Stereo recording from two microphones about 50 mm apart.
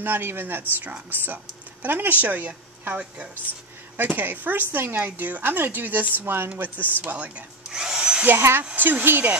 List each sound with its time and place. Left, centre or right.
0.0 s speech: right
7.7 s speech: centre
8.4 s speech: right
8.7 s speech: right